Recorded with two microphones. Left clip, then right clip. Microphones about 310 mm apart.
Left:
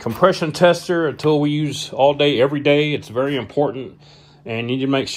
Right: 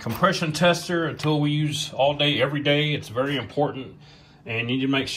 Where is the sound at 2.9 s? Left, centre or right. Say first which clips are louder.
Left 5 dB; left.